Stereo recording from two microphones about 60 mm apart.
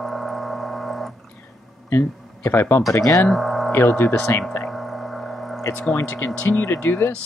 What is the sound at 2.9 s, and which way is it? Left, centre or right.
Speech, left.